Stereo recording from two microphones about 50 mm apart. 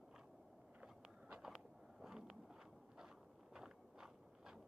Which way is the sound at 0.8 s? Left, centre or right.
Right.